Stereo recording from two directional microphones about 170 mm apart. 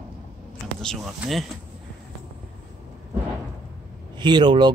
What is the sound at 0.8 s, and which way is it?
Speech, centre (ahead or behind).